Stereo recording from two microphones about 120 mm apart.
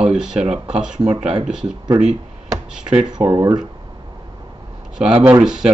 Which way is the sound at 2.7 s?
5° right (ahead or behind).